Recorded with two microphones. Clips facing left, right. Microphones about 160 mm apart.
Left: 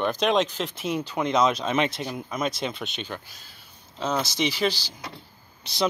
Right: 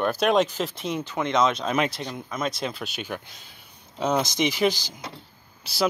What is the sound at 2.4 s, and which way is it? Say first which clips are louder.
Speech: even; centre (ahead or behind).